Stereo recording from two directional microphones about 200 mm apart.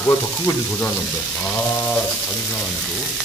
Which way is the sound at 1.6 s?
10° left (ahead or behind).